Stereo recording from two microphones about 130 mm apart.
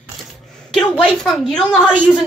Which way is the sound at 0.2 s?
Centre (ahead or behind).